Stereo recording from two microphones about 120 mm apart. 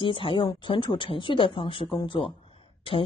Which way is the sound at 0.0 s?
45° left (ahead or behind).